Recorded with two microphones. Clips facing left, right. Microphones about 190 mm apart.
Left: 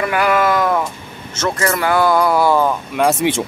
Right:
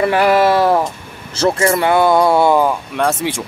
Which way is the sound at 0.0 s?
30° right (ahead or behind).